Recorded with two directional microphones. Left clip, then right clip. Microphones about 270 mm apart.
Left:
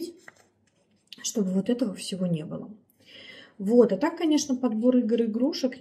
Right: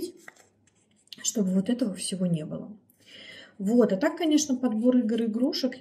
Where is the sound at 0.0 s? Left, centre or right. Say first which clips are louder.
Right 1 dB; centre.